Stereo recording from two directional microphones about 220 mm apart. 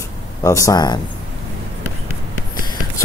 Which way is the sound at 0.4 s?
15° left (ahead or behind).